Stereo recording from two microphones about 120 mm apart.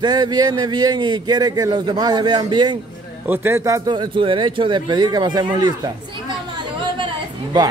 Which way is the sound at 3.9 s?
45° right (ahead or behind).